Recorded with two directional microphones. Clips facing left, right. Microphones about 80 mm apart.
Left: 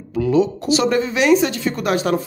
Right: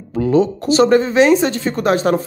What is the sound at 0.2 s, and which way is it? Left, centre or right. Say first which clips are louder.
Speech: right 2 dB; right.